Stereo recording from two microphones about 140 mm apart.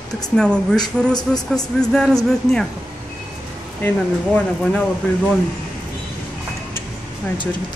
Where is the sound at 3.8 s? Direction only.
15° left (ahead or behind).